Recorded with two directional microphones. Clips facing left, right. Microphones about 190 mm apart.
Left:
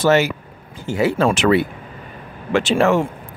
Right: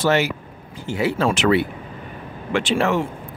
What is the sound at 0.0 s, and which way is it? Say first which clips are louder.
Speech: left 4 dB; 45° left (ahead or behind).